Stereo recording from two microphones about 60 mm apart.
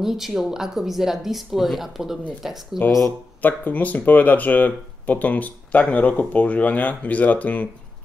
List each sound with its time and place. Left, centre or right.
0.0 s speech: centre
3.4 s speech: left